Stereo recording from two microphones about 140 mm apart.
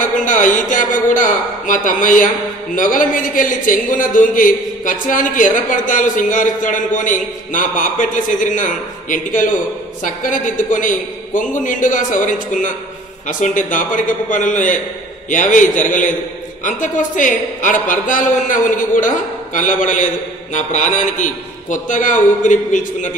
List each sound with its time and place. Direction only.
0.0 s a man's voice: 70° left (ahead or behind)